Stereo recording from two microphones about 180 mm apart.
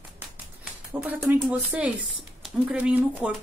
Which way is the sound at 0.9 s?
5° right (ahead or behind).